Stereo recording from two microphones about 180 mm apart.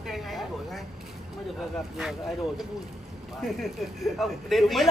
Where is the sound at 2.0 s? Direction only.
Centre (ahead or behind).